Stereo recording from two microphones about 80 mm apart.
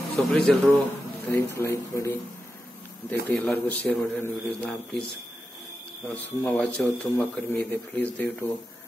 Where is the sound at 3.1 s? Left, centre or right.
Left.